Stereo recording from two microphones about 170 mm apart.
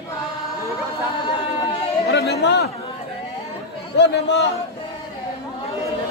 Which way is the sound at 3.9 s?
90° left.